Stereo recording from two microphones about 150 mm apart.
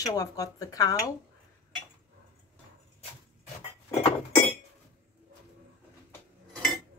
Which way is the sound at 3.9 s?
45° left (ahead or behind).